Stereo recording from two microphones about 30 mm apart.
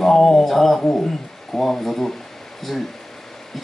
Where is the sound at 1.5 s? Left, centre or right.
Centre.